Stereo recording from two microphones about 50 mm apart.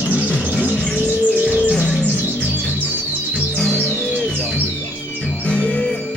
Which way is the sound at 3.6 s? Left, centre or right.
Centre.